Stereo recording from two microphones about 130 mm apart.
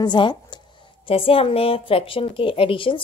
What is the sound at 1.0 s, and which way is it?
A woman's voice, 45° left (ahead or behind).